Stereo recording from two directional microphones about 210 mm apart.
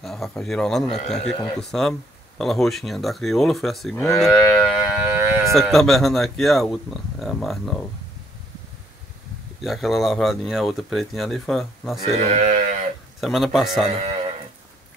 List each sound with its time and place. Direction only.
0.0 s speech: centre (ahead or behind)
4.2 s moo: centre (ahead or behind)
5.4 s speech: centre (ahead or behind)
9.6 s speech: centre (ahead or behind)
12.0 s speech: 35° right (ahead or behind)
13.2 s speech: centre (ahead or behind)